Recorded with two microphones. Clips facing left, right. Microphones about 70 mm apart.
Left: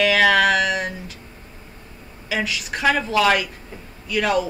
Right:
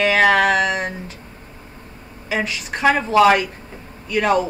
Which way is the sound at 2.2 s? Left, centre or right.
Right.